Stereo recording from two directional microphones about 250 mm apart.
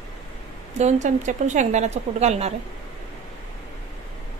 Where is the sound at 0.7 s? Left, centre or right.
Right.